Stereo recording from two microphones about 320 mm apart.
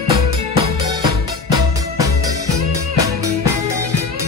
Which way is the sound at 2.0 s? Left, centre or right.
Centre.